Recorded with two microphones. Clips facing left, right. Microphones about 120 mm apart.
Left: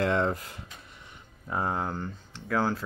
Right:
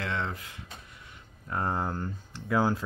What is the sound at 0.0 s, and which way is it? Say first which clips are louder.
Speech: left 7 dB; 45° left (ahead or behind).